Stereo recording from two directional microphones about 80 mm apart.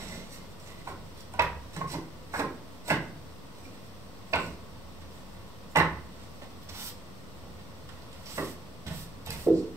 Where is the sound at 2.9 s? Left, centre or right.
Right.